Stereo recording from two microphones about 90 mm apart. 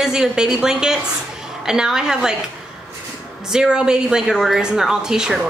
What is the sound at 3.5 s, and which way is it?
A woman's voice, 5° right (ahead or behind).